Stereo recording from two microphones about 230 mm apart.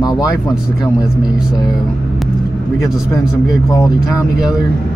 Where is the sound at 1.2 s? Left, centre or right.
Centre.